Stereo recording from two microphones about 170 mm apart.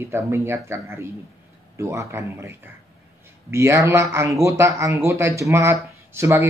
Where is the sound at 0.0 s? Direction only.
15° right (ahead or behind).